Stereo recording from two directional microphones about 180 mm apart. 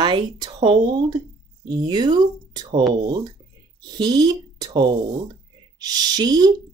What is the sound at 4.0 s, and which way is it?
Speech, 20° right (ahead or behind).